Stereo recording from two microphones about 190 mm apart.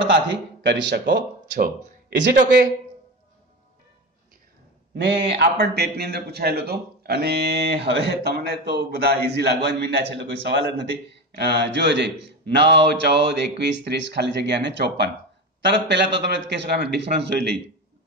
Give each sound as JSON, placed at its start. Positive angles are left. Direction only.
{"t": 0.0, "sound": "speech", "side_deg": -65}
{"t": 4.9, "sound": "a man's voice", "side_deg": -65}